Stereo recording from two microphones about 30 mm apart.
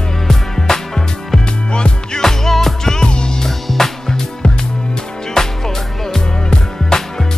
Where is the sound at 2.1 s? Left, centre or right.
Centre.